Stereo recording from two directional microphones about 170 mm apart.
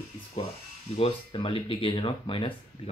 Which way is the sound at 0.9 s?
35° left (ahead or behind).